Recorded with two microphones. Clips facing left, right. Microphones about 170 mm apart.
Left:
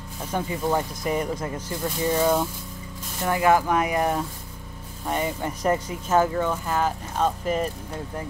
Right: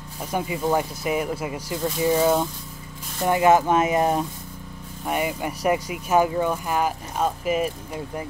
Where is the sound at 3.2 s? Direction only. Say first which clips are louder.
Right 3 dB; 20° right (ahead or behind).